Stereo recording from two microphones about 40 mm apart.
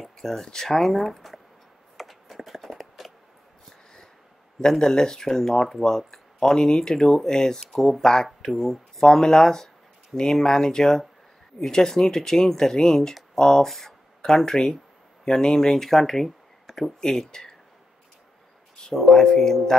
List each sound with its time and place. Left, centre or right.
0.2 s speech: centre
2.0 s a sound: centre
4.6 s speech: centre
18.9 s speech: centre